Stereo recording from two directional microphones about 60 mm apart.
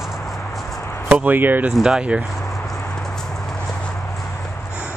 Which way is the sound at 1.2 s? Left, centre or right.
Right.